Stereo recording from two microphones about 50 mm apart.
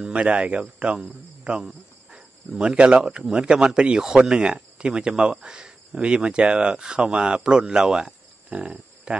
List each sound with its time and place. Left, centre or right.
0.0 s speech: right
1.4 s insect: centre
2.1 s speech: centre